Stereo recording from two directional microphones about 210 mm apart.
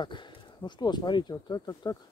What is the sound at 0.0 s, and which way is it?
Speech, 20° left (ahead or behind).